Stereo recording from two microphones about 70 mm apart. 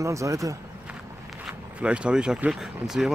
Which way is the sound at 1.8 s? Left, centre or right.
Centre.